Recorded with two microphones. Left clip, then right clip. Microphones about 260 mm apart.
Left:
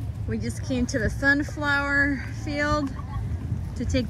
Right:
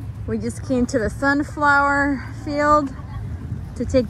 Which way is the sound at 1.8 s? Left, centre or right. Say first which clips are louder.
Right 5 dB; right.